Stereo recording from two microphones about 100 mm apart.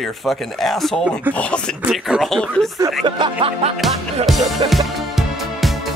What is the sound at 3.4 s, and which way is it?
Music, 90° right.